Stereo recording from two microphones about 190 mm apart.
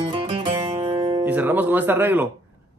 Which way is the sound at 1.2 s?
10° right (ahead or behind).